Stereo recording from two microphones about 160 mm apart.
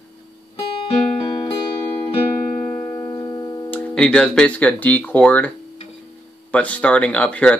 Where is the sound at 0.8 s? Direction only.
40° left (ahead or behind).